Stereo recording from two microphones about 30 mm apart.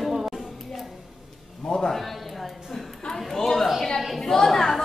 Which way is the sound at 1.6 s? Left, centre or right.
Centre.